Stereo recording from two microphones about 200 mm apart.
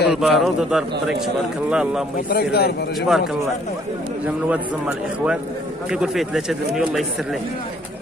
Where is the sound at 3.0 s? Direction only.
Centre (ahead or behind).